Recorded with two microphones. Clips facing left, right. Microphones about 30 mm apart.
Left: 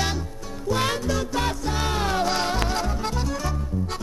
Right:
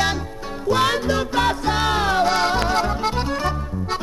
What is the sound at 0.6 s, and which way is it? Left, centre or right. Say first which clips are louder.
Music: right 5 dB; right.